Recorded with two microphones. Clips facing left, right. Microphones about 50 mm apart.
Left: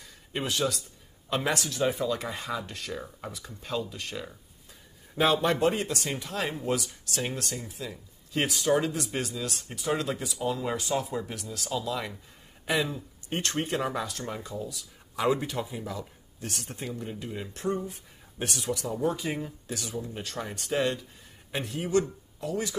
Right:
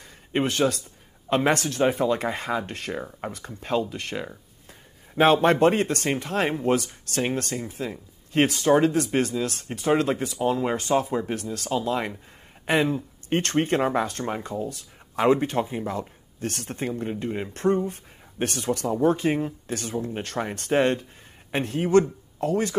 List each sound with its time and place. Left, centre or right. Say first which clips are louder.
0.3 s speech: right 6 dB; right
11.5 s speech: right 5 dB; right